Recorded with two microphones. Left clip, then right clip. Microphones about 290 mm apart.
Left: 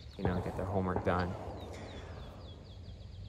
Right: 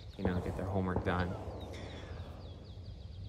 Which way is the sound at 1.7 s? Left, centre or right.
Centre.